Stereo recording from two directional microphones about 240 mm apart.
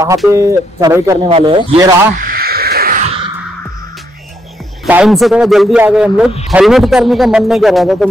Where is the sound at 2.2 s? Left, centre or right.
Right.